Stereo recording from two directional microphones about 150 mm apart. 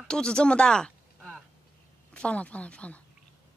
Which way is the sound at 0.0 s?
5° left (ahead or behind).